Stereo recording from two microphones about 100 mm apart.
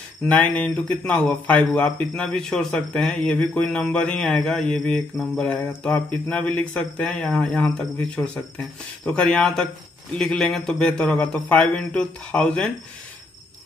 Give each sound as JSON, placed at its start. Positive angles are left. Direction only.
{"t": 0.3, "sound": "a man's voice", "side_deg": 15}
{"t": 2.0, "sound": "a man's voice", "side_deg": 5}